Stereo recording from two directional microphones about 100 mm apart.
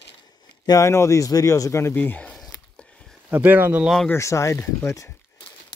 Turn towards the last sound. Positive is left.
turn(degrees=30)  # may be behind; listen again after turning